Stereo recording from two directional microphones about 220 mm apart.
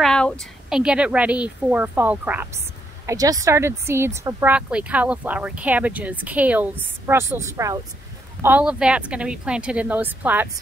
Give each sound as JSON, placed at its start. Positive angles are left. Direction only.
{"t": 0.0, "sound": "a woman's voice", "side_deg": 5}